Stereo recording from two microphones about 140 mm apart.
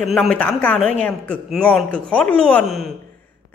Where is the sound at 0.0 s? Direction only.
Centre (ahead or behind).